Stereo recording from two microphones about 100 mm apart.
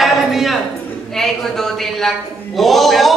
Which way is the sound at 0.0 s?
Centre (ahead or behind).